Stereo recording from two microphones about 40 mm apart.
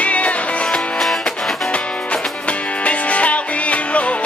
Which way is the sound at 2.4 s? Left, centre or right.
Left.